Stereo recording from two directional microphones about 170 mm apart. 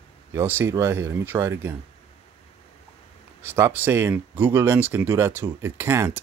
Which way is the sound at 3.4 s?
15° right (ahead or behind).